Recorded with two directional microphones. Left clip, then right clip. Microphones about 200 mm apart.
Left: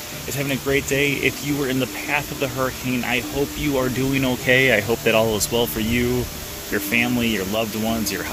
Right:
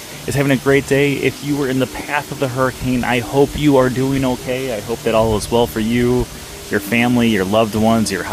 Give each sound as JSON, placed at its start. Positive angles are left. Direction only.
{"t": 0.4, "sound": "speech", "side_deg": -30}
{"t": 4.5, "sound": "speech", "side_deg": 0}
{"t": 5.0, "sound": "speech", "side_deg": -15}